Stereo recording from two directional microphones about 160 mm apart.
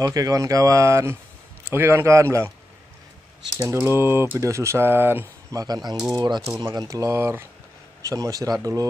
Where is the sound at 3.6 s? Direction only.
15° right (ahead or behind).